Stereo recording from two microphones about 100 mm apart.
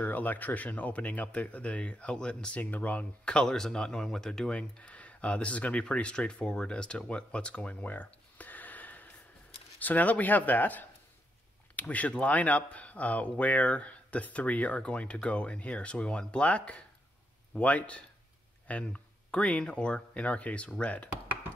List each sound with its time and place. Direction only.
0.0 s speech: 15° left (ahead or behind)